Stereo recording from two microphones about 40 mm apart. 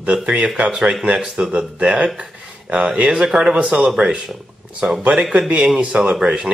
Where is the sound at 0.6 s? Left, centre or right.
Right.